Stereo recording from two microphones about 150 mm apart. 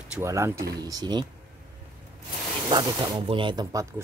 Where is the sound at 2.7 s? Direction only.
30° right (ahead or behind).